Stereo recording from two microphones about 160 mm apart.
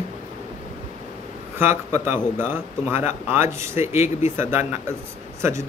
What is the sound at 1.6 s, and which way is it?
Speech, 15° right (ahead or behind).